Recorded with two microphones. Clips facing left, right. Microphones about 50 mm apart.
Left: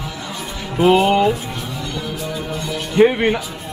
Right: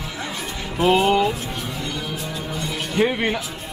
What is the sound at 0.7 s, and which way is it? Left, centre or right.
Speech, centre.